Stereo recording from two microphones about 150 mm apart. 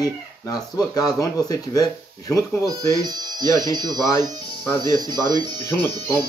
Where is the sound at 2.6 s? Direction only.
25° right (ahead or behind).